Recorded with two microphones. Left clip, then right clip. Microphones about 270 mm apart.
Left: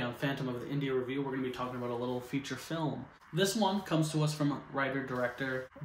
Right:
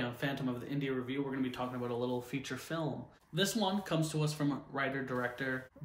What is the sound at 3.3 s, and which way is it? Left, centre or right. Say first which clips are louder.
Speech: left 3 dB; centre.